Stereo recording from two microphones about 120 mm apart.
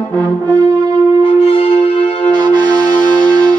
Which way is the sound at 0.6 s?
35° right (ahead or behind).